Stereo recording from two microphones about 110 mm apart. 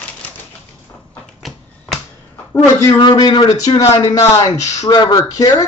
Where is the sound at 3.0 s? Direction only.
45° left (ahead or behind).